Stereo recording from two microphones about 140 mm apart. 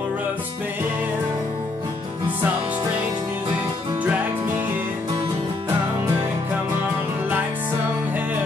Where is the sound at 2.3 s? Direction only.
15° right (ahead or behind).